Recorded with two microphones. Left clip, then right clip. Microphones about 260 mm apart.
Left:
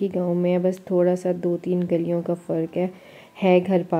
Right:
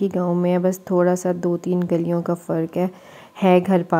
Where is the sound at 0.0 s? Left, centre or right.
Centre.